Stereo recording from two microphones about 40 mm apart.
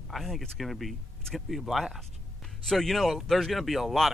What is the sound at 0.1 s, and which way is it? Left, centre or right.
Speech, centre.